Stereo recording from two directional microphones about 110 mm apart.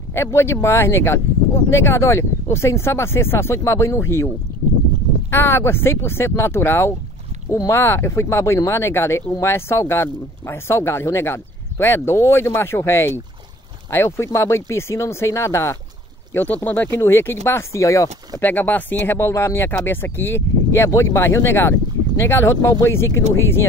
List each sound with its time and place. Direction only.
0.1 s speech: 25° left (ahead or behind)
5.3 s speech: 20° left (ahead or behind)
18.4 s speech: 15° left (ahead or behind)